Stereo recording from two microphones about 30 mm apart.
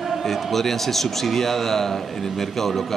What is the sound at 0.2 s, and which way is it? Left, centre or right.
A man's voice, centre.